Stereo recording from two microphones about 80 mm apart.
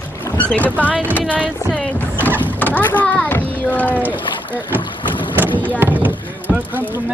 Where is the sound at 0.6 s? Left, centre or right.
Centre.